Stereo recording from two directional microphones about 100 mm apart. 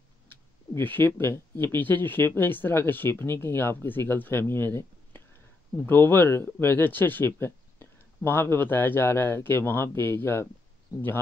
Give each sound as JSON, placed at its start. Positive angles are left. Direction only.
{"t": 0.7, "sound": "speech", "side_deg": 20}